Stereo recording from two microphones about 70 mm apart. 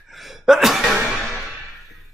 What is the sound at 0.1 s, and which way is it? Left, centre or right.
Gasp, centre.